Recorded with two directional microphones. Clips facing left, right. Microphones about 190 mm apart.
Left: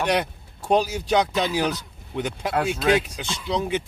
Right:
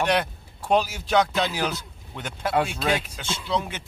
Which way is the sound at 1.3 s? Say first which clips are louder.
Left 3 dB; 15° left (ahead or behind).